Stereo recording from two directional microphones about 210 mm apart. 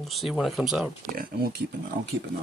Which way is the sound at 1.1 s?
50° right (ahead or behind).